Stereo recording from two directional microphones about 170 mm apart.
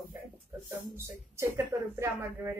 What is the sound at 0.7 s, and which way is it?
A woman's voice, 15° right (ahead or behind).